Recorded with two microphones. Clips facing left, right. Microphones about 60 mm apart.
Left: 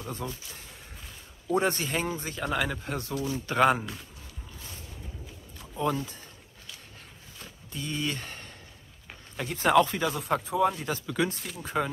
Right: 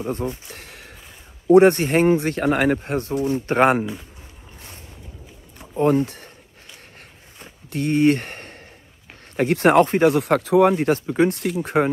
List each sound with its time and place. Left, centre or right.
0.0 s speech: right
0.6 s a sound: right
1.5 s speech: right
5.8 s speech: right
6.0 s speech: right
7.7 s speech: right
10.1 s speech: right
11.2 s speech: right
11.6 s speech: right